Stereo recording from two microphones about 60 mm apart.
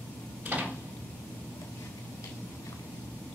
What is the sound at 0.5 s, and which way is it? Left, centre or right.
Door, right.